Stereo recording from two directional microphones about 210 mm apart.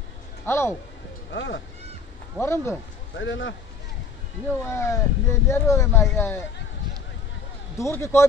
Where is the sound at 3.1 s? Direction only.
60° left (ahead or behind).